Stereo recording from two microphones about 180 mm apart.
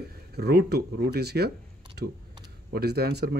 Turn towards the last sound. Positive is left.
turn(degrees=-60)  # may be behind; listen again after turning